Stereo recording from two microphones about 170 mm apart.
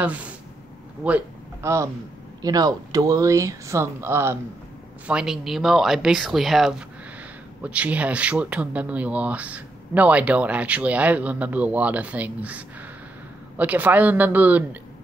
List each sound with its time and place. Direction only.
0.0 s speech: 10° right (ahead or behind)
5.0 s speech: 5° right (ahead or behind)